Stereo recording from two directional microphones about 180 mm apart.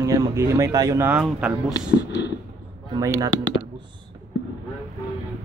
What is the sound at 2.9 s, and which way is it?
Speech, 20° right (ahead or behind).